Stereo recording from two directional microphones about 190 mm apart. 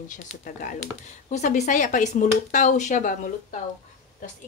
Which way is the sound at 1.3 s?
40° left (ahead or behind).